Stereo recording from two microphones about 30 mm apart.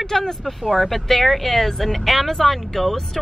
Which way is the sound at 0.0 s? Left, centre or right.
Centre.